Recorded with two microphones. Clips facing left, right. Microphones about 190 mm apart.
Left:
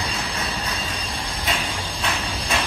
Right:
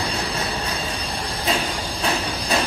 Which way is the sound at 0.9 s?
35° right (ahead or behind).